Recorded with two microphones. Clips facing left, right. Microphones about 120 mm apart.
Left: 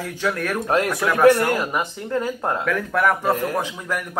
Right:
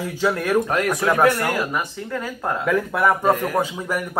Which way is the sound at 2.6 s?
15° right (ahead or behind).